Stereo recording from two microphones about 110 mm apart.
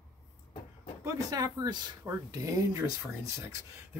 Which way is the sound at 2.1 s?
20° right (ahead or behind).